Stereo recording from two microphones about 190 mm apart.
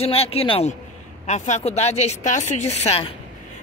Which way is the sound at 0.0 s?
30° left (ahead or behind).